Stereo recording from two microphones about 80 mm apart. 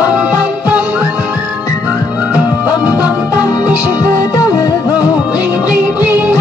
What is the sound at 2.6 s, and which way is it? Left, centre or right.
Music, centre.